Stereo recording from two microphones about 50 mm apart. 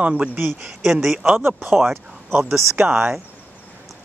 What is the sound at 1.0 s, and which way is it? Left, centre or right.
Speech, centre.